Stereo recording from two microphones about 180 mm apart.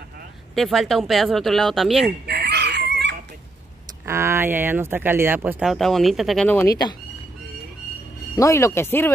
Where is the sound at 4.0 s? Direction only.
15° right (ahead or behind); by 7.0 s 20° left (ahead or behind).